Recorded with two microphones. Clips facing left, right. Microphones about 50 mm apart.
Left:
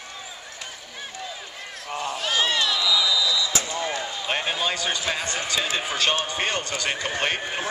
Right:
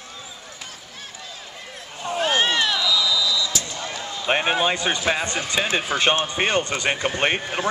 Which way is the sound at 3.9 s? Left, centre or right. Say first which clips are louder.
Left 2 dB; centre.